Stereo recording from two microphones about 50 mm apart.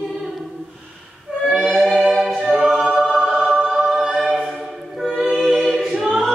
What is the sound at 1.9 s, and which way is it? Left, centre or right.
Choir, centre.